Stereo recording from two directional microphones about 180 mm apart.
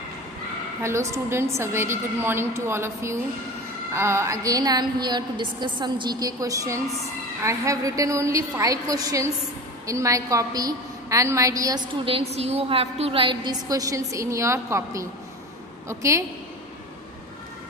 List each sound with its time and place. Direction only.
0.8 s a woman's voice: 15° right (ahead or behind)